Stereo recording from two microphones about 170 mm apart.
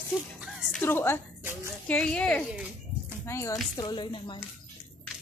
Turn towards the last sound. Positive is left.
turn(degrees=30)  # may be behind; listen again after turning